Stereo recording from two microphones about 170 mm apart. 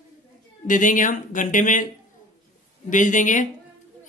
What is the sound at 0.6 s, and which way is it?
Speech, 50° left (ahead or behind).